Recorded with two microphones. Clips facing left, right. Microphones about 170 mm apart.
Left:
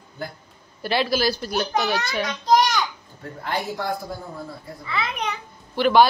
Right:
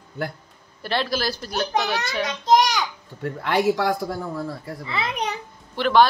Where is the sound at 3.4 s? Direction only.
80° right.